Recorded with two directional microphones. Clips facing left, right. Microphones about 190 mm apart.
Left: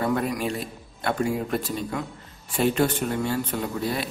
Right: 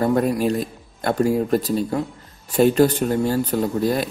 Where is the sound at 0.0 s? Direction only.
40° right (ahead or behind).